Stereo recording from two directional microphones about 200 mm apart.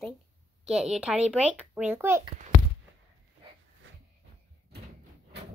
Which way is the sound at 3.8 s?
70° right (ahead or behind).